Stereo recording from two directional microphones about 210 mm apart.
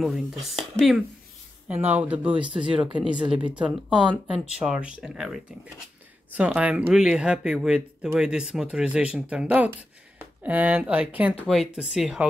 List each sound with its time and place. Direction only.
0.0 s speech: centre (ahead or behind)